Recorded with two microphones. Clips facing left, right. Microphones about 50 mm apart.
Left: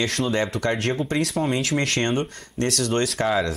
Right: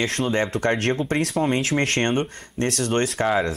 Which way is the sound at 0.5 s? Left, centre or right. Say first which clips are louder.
Right 2 dB; right.